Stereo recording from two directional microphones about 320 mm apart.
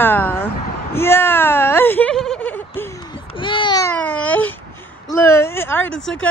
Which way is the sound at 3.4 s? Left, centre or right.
Centre.